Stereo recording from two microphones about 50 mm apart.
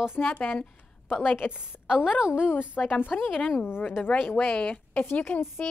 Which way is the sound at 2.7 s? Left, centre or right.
Left.